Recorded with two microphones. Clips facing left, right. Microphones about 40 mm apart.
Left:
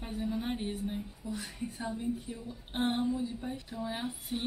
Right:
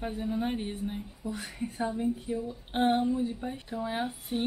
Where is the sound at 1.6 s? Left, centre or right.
Right.